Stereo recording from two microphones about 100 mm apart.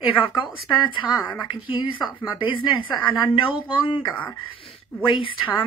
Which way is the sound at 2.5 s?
60° left (ahead or behind).